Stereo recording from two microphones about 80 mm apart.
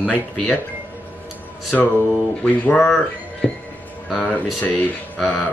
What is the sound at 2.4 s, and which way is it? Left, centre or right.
Speech, centre.